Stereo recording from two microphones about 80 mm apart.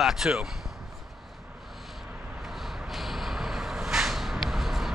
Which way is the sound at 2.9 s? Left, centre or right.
Centre.